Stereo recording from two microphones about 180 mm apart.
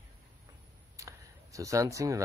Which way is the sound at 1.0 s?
15° right (ahead or behind).